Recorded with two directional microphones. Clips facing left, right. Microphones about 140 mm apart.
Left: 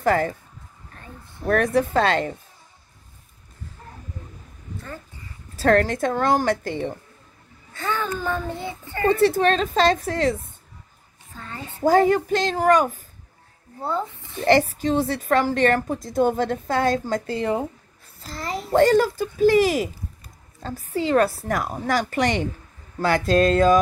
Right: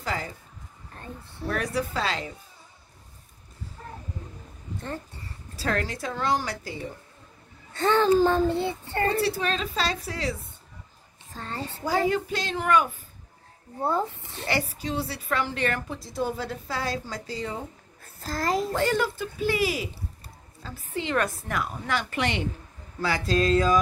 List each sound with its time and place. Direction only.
0.0 s a woman's voice: 55° left (ahead or behind)
1.4 s a woman's voice: 50° left (ahead or behind)
5.6 s a woman's voice: 45° left (ahead or behind)
7.8 s a child's voice: 30° right (ahead or behind)
9.2 s a woman's voice: 45° left (ahead or behind)
11.3 s a child's voice: 35° right (ahead or behind)
11.8 s a woman's voice: 45° left (ahead or behind)
14.4 s a woman's voice: 45° left (ahead or behind)
18.2 s a child's voice: 45° right (ahead or behind)
18.7 s a woman's voice: 40° left (ahead or behind)
22.9 s speech: 55° left (ahead or behind)